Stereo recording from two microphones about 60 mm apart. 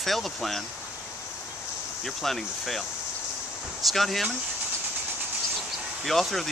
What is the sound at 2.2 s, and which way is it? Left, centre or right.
Speech, centre.